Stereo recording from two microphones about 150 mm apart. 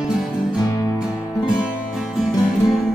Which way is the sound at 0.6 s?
20° left (ahead or behind).